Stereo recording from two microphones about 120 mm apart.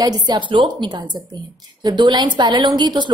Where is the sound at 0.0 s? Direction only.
35° right (ahead or behind).